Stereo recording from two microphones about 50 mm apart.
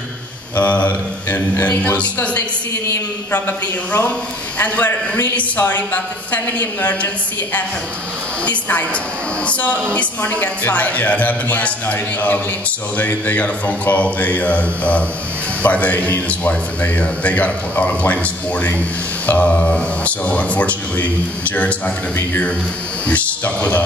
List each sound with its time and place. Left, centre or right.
0.6 s speech: left
4.6 s speech: left
8.5 s speech: left
23.0 s speech: left